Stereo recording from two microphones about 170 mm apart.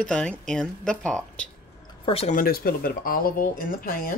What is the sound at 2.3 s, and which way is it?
Speech, 60° left (ahead or behind).